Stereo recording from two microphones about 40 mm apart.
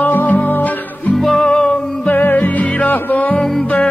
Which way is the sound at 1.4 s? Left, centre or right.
Left.